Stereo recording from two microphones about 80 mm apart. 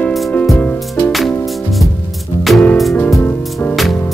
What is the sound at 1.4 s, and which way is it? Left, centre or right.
Music, centre.